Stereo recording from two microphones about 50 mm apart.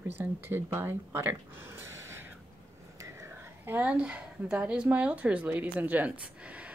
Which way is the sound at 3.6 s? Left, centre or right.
Right.